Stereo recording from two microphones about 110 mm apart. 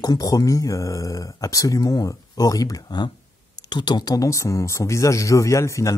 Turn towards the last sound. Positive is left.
turn(degrees=30)  # may be behind; listen again after turning